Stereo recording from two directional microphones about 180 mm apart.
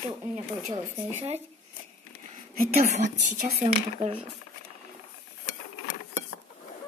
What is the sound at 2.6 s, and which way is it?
Speech, 45° right (ahead or behind).